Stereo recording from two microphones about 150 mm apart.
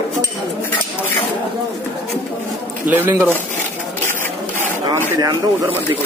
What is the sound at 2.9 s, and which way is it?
Speech, 15° right (ahead or behind).